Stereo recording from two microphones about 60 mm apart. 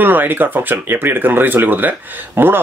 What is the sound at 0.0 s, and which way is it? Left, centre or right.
Speech, right.